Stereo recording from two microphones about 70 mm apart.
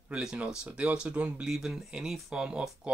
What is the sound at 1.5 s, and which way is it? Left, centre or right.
Speech, centre.